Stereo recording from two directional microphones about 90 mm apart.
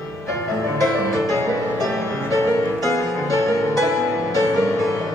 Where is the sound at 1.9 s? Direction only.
35° left (ahead or behind).